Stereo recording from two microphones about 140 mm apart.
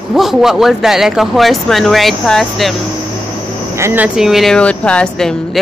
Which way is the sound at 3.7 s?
15° right (ahead or behind).